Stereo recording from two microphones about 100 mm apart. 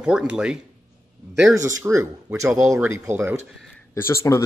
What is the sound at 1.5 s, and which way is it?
Speech, 30° right (ahead or behind).